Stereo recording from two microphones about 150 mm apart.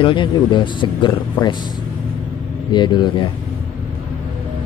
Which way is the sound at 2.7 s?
30° left (ahead or behind).